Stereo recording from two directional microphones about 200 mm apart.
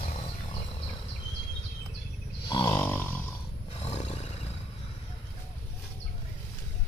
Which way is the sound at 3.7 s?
30° left (ahead or behind).